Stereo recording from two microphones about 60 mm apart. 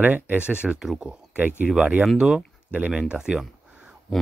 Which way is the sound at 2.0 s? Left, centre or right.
Centre.